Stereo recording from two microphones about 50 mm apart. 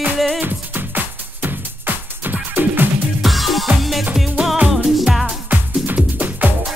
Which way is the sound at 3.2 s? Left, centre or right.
Centre.